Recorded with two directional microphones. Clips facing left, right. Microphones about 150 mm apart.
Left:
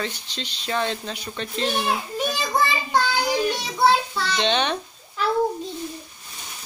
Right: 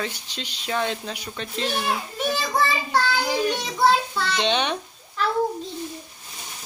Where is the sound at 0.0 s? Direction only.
10° right (ahead or behind).